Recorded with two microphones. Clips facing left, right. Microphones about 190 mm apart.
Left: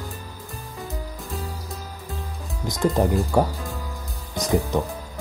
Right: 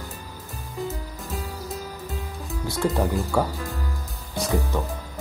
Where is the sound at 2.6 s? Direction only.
15° left (ahead or behind).